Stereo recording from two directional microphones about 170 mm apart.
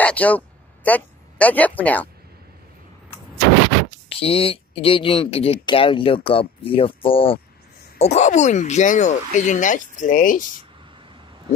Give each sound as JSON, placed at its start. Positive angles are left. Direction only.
{"t": 0.0, "sound": "a sound", "side_deg": 10}
{"t": 0.8, "sound": "speech", "side_deg": 10}
{"t": 4.1, "sound": "speech", "side_deg": 35}